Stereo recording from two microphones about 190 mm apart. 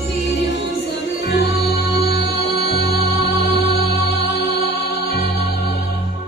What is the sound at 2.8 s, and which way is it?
Music, 65° left (ahead or behind).